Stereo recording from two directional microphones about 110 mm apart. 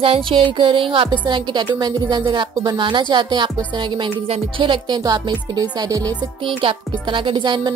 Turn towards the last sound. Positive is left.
turn(degrees=-45)  # may be behind; listen again after turning